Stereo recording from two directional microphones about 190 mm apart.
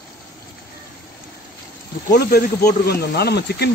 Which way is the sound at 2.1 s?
55° left (ahead or behind).